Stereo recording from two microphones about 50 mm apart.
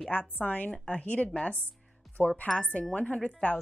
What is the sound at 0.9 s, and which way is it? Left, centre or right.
Speech, left.